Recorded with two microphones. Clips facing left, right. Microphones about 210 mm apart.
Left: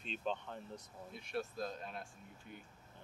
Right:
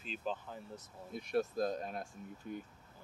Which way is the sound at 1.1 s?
40° right (ahead or behind).